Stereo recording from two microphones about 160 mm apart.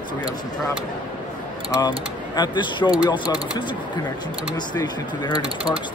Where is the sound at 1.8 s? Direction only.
25° left (ahead or behind).